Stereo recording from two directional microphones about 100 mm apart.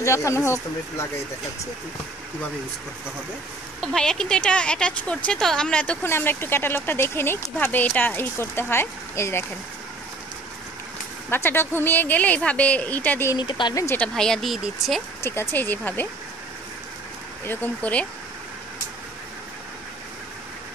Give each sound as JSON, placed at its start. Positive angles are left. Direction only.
{"t": 0.0, "sound": "speech", "side_deg": 30}
{"t": 3.8, "sound": "speech", "side_deg": 5}
{"t": 6.0, "sound": "speech", "side_deg": 20}
{"t": 11.2, "sound": "speech", "side_deg": 25}
{"t": 13.4, "sound": "speech", "side_deg": 50}
{"t": 13.9, "sound": "speech", "side_deg": 10}
{"t": 15.2, "sound": "speech", "side_deg": 20}
{"t": 17.5, "sound": "speech", "side_deg": 15}